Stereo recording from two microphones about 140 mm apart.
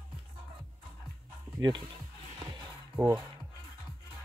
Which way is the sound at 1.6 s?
30° right (ahead or behind).